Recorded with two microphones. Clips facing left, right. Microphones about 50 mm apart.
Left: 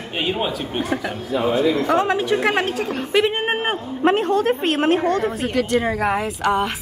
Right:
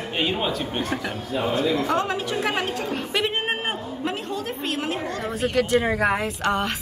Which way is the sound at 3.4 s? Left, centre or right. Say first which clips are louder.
Left 5 dB; left.